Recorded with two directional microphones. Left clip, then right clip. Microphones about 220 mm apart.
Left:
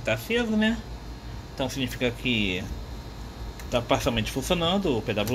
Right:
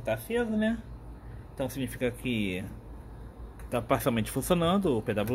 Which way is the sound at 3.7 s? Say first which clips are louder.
Left 3 dB; 25° right (ahead or behind).